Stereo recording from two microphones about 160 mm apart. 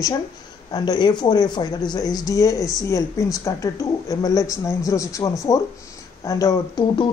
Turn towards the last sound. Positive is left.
turn(degrees=25)  # may be behind; listen again after turning